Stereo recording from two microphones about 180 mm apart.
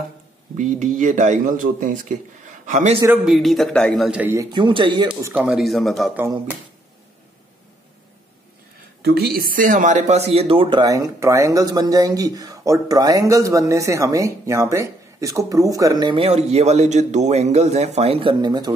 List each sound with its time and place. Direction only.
0.6 s a man's voice: 45° right (ahead or behind)
3.3 s a man's voice: centre (ahead or behind); by 5.3 s 25° right (ahead or behind)
5.3 s speech: 5° right (ahead or behind)
9.0 s speech: 60° right (ahead or behind); by 18.7 s 25° right (ahead or behind)